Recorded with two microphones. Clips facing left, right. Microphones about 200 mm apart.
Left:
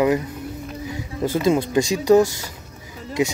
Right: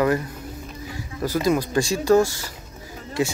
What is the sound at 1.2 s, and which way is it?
Speech, 25° left (ahead or behind).